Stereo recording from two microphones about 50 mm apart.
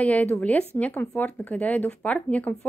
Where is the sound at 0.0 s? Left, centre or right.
Left.